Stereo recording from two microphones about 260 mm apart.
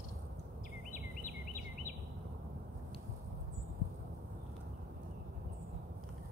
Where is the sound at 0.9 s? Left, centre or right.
Left.